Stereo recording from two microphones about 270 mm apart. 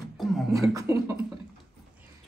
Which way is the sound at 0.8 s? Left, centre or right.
Centre.